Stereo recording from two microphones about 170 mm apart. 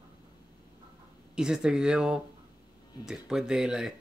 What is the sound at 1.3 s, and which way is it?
Speech, 5° right (ahead or behind).